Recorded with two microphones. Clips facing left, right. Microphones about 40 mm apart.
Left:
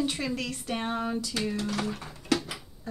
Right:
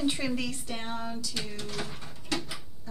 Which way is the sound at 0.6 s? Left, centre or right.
Centre.